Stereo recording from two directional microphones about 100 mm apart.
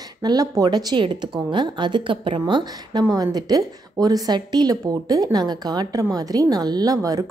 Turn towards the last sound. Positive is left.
turn(degrees=-35)  # may be behind; listen again after turning